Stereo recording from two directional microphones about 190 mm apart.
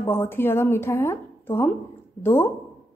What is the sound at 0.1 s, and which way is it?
A woman's voice, 10° left (ahead or behind).